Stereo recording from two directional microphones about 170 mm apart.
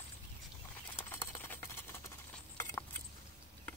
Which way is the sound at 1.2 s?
15° left (ahead or behind).